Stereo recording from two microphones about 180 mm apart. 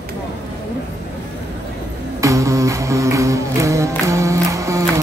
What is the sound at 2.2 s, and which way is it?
Music, 15° right (ahead or behind).